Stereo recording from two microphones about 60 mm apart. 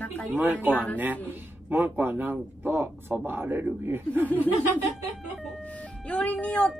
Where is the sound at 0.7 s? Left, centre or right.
Left.